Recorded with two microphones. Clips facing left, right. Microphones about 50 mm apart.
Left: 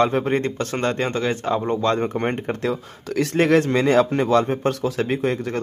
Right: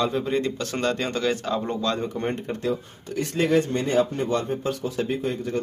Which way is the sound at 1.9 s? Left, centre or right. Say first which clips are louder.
Left 5 dB; left.